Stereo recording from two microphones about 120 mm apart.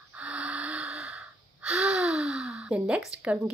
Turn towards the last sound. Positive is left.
turn(degrees=-10)  # may be behind; listen again after turning